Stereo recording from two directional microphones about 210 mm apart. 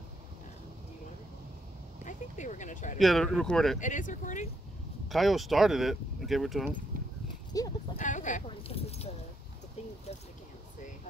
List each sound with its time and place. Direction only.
2.0 s speech: 35° left (ahead or behind)
3.0 s speech: centre (ahead or behind)
3.8 s speech: 35° left (ahead or behind)
5.0 s speech: centre (ahead or behind)
7.5 s speech: 15° left (ahead or behind)
7.9 s speech: 35° left (ahead or behind)